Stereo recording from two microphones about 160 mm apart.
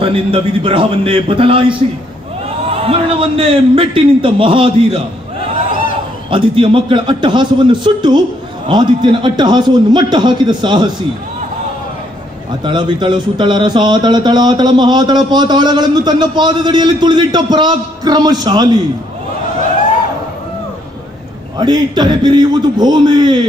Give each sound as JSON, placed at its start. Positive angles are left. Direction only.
{"t": 0.0, "sound": "a man's voice", "side_deg": -35}
{"t": 6.3, "sound": "a man's voice", "side_deg": -35}
{"t": 12.6, "sound": "a man's voice", "side_deg": -30}
{"t": 21.5, "sound": "a man's voice", "side_deg": -25}